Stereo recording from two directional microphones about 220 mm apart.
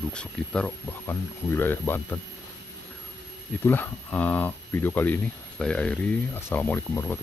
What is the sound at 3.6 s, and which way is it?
Speech, 10° left (ahead or behind).